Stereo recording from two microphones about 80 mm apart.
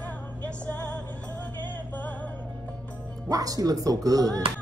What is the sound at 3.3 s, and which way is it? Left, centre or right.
Speech, right.